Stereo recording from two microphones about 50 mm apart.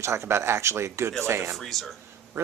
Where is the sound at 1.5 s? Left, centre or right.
Centre.